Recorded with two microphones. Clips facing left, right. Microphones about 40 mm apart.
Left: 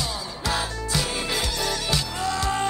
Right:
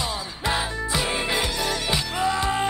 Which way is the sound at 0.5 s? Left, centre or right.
Centre.